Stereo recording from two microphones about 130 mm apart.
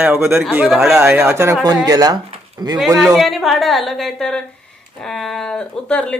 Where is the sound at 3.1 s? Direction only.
Centre (ahead or behind).